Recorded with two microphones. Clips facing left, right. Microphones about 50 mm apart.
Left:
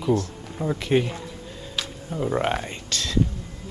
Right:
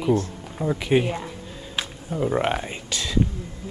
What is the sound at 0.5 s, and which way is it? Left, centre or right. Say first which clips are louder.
Speech: right 1 dB; centre.